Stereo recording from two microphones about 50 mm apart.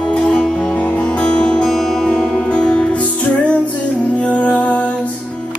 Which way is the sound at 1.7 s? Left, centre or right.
Centre.